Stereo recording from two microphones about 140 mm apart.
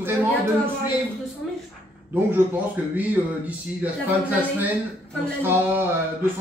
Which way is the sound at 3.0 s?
10° right (ahead or behind).